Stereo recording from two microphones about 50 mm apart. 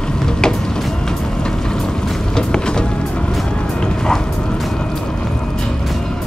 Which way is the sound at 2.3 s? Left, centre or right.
Centre.